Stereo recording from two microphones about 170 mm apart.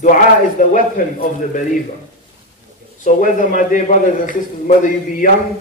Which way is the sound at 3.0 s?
50° left (ahead or behind).